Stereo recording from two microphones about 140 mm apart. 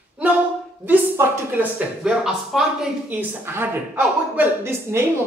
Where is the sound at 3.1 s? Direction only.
15° right (ahead or behind).